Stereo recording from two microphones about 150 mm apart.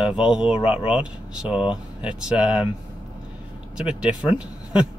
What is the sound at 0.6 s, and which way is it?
Speech, 40° left (ahead or behind).